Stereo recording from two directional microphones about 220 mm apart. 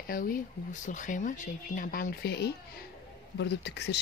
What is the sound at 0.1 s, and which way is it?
Speech, 40° left (ahead or behind).